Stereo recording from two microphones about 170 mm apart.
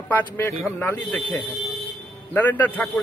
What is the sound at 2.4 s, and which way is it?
Speech, 10° left (ahead or behind).